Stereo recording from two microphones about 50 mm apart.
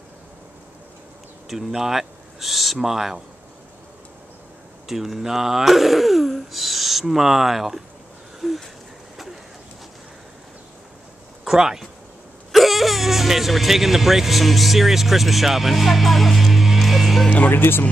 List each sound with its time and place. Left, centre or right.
1.5 s speech: centre
4.8 s speech: centre
8.4 s a sound: centre
11.4 s speech: centre
17.5 s speech: left